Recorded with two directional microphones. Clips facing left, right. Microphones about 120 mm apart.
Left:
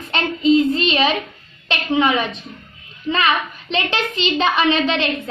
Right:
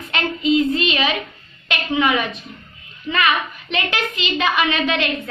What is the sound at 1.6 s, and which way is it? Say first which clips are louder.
A woman's voice: left 2 dB; 30° left (ahead or behind).